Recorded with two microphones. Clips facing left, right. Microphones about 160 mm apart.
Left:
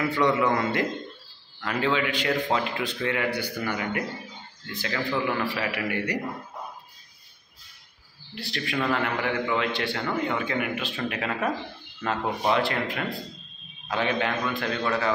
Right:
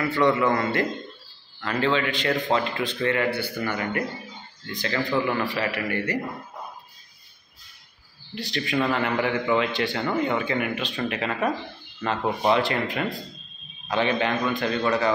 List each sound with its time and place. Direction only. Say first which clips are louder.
0.1 s a man's voice: right 3 dB; 15° left (ahead or behind)
8.4 s a man's voice: right 4 dB; centre (ahead or behind)